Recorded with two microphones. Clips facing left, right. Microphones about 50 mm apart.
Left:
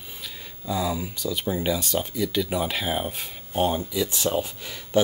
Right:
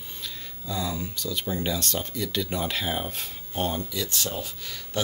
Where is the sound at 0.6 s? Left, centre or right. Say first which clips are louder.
Left 4 dB; centre.